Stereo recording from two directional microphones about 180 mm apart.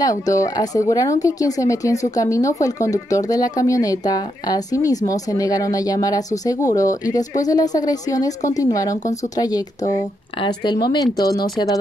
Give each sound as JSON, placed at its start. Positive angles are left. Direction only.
{"t": 0.0, "sound": "speech", "side_deg": 20}